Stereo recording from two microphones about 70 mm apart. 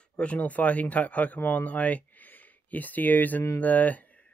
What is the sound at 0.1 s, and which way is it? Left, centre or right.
Speech, centre.